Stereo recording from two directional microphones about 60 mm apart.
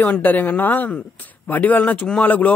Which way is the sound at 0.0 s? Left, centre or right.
Left.